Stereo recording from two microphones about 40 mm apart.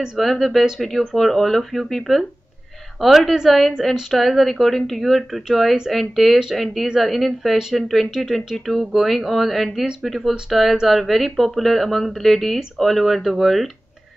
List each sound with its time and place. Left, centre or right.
0.2 s speech: centre